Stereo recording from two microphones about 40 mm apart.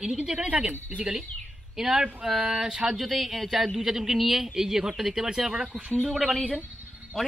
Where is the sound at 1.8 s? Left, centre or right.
Centre.